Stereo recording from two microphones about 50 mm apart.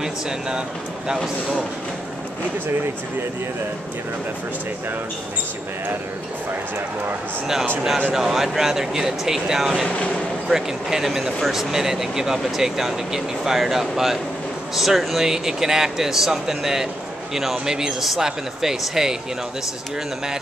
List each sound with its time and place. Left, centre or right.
1.0 s speech: centre
8.1 s speech: centre
9.8 s speech: left
10.5 s speech: centre